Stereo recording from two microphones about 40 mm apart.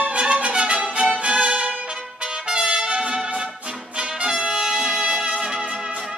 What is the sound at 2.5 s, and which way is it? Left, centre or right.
Trumpet, right.